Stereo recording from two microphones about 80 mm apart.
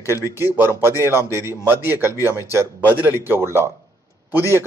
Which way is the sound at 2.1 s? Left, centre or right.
Left.